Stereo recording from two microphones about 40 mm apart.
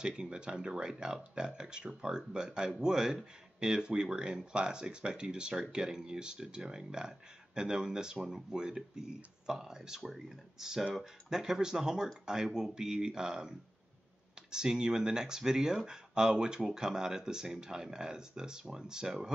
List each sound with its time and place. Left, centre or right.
0.0 s speech: right